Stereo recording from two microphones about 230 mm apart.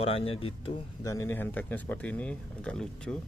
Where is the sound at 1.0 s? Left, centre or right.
Centre.